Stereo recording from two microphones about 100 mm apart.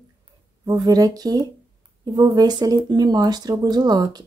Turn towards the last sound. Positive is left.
turn(degrees=-45)  # may be behind; listen again after turning